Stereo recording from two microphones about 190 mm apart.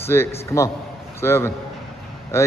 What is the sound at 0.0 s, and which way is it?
A man's voice, 10° left (ahead or behind).